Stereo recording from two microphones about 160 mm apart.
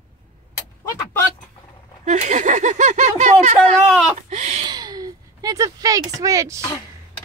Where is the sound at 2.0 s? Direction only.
50° right (ahead or behind).